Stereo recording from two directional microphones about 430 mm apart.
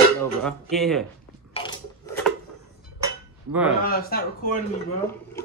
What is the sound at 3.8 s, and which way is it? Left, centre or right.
Speech, left.